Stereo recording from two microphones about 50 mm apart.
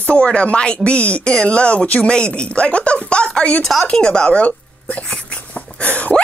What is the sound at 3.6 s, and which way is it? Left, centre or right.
Speech, centre.